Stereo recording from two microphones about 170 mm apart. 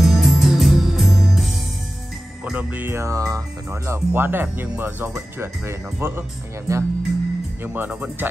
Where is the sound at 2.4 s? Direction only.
10° right (ahead or behind).